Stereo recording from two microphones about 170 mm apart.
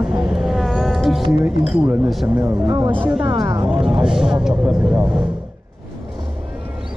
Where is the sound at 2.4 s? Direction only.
20° right (ahead or behind).